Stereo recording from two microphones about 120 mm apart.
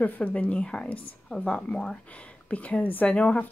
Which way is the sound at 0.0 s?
10° left (ahead or behind).